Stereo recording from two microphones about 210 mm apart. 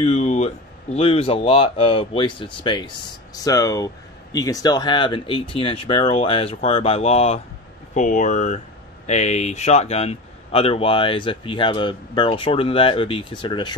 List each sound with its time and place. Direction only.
0.0 s speech: 35° left (ahead or behind)